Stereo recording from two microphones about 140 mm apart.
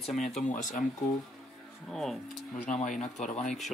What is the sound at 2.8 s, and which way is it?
Speech, 65° left (ahead or behind).